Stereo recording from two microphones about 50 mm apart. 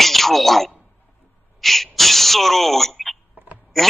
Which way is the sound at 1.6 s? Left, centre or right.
Centre.